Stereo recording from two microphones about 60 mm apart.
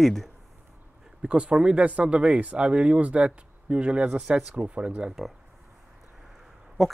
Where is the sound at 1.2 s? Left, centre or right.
Centre.